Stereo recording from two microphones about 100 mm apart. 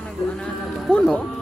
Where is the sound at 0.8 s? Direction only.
10° left (ahead or behind).